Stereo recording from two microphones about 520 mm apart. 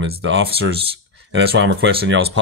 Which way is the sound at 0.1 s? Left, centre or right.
Right.